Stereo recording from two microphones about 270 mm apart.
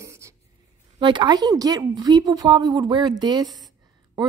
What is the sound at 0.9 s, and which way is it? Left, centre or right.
Speech, centre.